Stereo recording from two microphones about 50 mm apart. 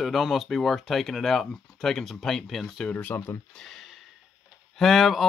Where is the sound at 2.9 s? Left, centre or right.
Left.